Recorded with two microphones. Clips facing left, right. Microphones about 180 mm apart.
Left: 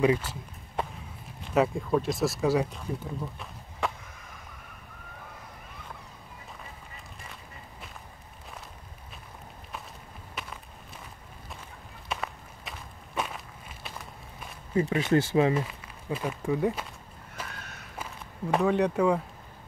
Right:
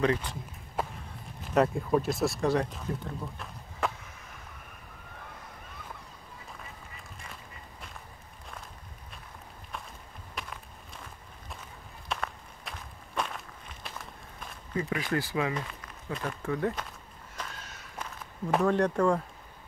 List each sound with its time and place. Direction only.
0.0 s a sound: 10° left (ahead or behind)
1.5 s speech: centre (ahead or behind)
3.8 s chop: centre (ahead or behind)
10.4 s walk: centre (ahead or behind)
12.1 s walk: 5° left (ahead or behind)
14.8 s speech: 25° left (ahead or behind)
15.5 s speech: 5° left (ahead or behind)
17.4 s walk: 5° left (ahead or behind)
18.5 s speech: centre (ahead or behind)